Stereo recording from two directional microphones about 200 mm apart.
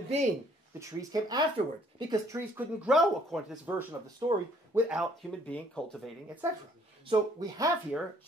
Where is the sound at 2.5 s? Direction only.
5° right (ahead or behind).